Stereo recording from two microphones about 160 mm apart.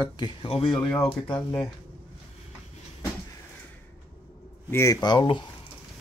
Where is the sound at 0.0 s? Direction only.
30° left (ahead or behind).